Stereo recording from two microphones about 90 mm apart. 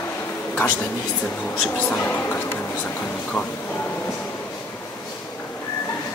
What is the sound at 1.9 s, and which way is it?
A woman's voice, 20° left (ahead or behind).